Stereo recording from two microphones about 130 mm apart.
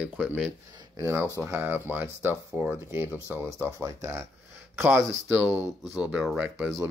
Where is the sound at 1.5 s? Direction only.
15° right (ahead or behind).